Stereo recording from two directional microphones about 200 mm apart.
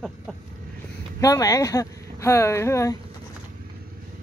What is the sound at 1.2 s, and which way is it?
Speech, 15° left (ahead or behind).